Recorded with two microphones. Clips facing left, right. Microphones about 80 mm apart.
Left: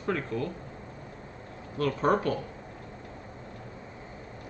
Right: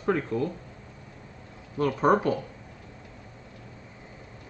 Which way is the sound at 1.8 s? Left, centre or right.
Centre.